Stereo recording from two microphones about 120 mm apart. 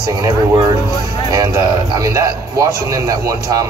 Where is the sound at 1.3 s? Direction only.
30° right (ahead or behind).